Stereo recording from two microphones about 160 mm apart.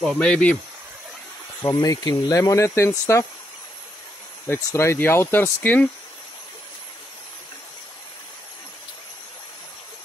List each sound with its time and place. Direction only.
0.0 s speech: 5° left (ahead or behind)
1.6 s speech: 25° left (ahead or behind)
4.5 s speech: 15° left (ahead or behind)